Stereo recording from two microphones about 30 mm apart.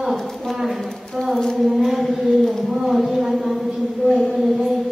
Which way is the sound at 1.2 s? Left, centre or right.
Centre.